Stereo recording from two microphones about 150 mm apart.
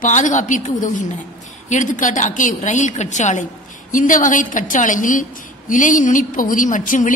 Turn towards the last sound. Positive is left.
turn(degrees=60)  # may be behind; listen again after turning